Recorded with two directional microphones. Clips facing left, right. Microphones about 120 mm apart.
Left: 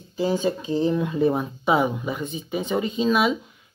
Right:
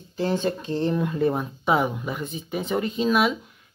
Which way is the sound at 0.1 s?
5° left (ahead or behind).